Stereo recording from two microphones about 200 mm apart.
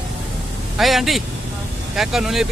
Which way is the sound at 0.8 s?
Centre (ahead or behind).